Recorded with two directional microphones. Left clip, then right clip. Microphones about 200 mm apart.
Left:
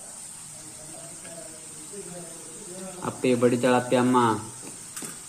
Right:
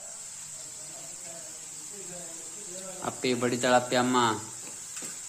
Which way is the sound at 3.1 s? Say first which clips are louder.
Left 6 dB; 20° right (ahead or behind).